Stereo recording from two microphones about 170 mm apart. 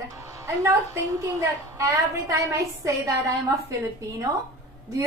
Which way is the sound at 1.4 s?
15° right (ahead or behind).